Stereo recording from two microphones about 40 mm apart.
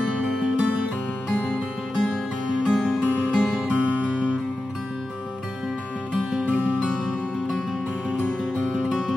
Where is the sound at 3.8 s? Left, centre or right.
Right.